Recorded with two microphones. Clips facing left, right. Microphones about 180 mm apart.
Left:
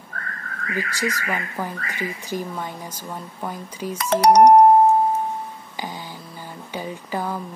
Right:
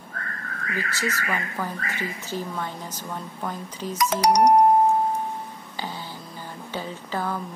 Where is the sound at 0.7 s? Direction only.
15° left (ahead or behind).